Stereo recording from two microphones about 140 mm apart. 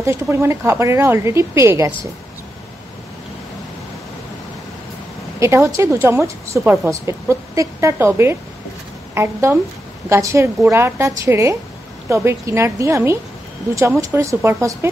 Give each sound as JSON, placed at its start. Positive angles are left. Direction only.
{"t": 0.0, "sound": "a woman's voice", "side_deg": -20}
{"t": 5.4, "sound": "a woman's voice", "side_deg": -20}